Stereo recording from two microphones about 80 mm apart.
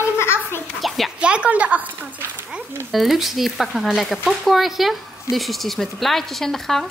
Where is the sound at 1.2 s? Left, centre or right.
Centre.